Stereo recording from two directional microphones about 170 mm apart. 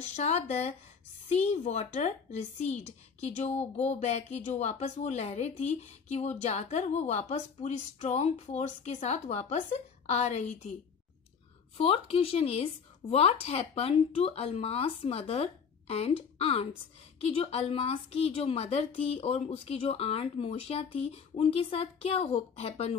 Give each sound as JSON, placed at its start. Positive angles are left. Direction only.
{"t": 0.0, "sound": "speech", "side_deg": 40}
{"t": 11.7, "sound": "speech", "side_deg": 35}